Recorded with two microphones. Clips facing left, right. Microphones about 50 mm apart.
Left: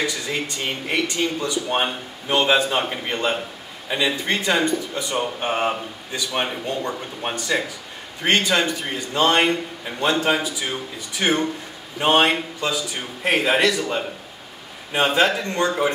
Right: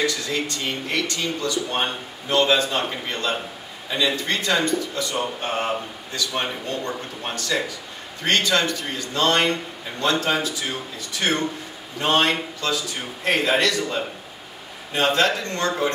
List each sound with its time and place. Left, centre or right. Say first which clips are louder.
0.0 s speech: right 1 dB; centre